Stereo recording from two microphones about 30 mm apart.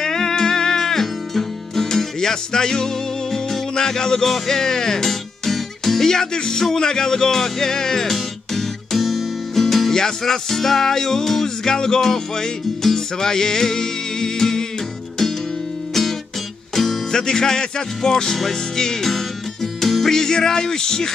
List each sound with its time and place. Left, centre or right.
0.0 s music: centre
6.0 s speech: centre
6.6 s music: centre
9.9 s music: centre
15.9 s music: centre
17.1 s speech: left
18.3 s music: centre